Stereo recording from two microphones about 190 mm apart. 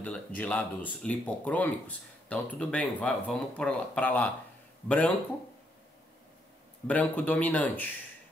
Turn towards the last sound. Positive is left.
turn(degrees=10)  # may be behind; listen again after turning